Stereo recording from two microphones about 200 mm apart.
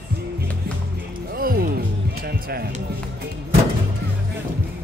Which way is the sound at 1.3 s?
50° right (ahead or behind).